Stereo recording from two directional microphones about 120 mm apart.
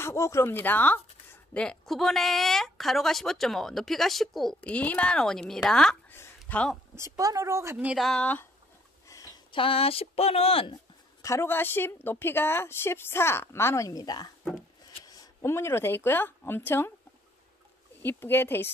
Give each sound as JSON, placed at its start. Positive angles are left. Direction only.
{"t": 0.0, "sound": "a woman's voice", "side_deg": 25}
{"t": 6.0, "sound": "a sound", "side_deg": 20}
{"t": 7.0, "sound": "a woman's voice", "side_deg": -25}
{"t": 7.7, "sound": "speech", "side_deg": -10}
{"t": 8.0, "sound": "speech", "side_deg": 5}
{"t": 9.0, "sound": "a sound", "side_deg": 30}
{"t": 9.5, "sound": "speech", "side_deg": 50}
{"t": 11.2, "sound": "a woman's voice", "side_deg": 20}
{"t": 18.0, "sound": "a woman's voice", "side_deg": 20}